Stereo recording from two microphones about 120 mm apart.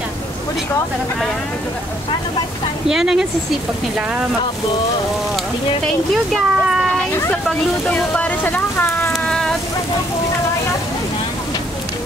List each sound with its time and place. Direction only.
2.9 s speech: 5° right (ahead or behind)
6.3 s speech: centre (ahead or behind)
7.9 s speech: 15° left (ahead or behind)
9.1 s a sound: 5° left (ahead or behind)